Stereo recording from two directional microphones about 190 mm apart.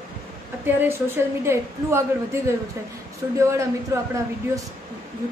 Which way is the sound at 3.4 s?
15° right (ahead or behind).